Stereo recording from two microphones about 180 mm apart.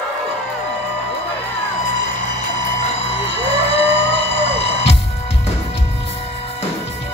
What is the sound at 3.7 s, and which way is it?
Music, 30° left (ahead or behind).